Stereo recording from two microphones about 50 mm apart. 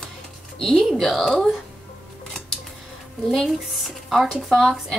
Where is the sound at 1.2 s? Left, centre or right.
Centre.